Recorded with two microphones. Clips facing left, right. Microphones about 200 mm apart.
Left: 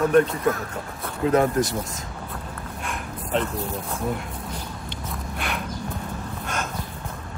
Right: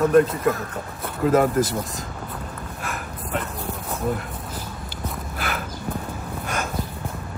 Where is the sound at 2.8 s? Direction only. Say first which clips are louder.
Right 1 dB; 5° right (ahead or behind).